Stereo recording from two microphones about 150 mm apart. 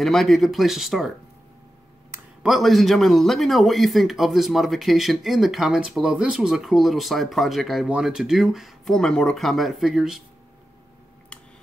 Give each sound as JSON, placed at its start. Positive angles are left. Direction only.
{"t": 0.0, "sound": "a man's voice", "side_deg": 0}
{"t": 2.4, "sound": "a man's voice", "side_deg": 0}